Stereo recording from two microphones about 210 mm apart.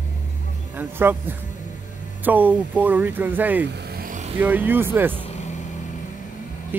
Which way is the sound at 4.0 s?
35° right (ahead or behind).